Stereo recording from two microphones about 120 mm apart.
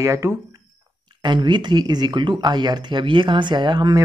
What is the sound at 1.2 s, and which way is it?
Speech, 40° right (ahead or behind).